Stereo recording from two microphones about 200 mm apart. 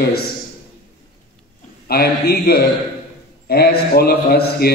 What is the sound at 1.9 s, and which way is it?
A man's voice, 50° left (ahead or behind).